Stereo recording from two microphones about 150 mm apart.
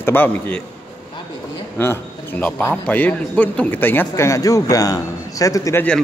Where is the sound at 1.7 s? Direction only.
10° left (ahead or behind).